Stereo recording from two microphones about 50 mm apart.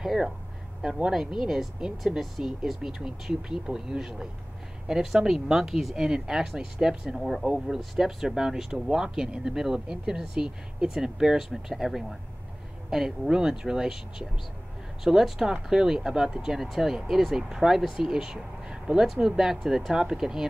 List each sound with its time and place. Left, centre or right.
0.0 s speech: centre
0.8 s speech: centre
2.1 s speech: centre
7.2 s speech: centre
16.5 s speech: centre